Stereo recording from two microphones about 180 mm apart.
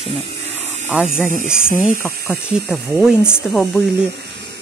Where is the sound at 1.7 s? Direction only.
45° left (ahead or behind).